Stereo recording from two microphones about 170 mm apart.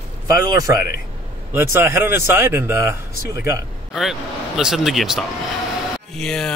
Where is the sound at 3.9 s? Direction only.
Centre (ahead or behind).